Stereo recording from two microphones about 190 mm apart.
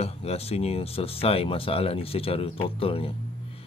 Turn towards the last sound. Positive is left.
turn(degrees=30)  # may be behind; listen again after turning